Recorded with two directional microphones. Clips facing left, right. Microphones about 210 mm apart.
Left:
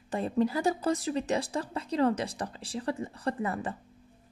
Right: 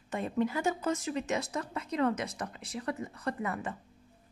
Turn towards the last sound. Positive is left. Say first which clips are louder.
# left 3 dB
turn(degrees=30)  # may be behind; listen again after turning